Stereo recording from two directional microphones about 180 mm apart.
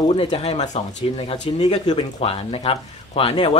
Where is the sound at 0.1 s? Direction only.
30° left (ahead or behind).